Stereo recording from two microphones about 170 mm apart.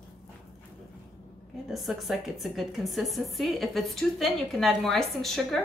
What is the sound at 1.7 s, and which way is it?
A woman's voice, centre (ahead or behind).